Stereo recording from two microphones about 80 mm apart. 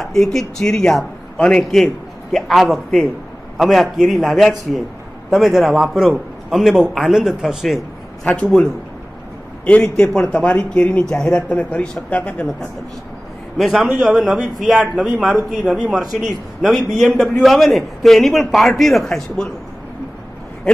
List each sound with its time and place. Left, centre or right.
0.0 s a man's voice: centre
10.1 s speech: centre
13.6 s a man's voice: centre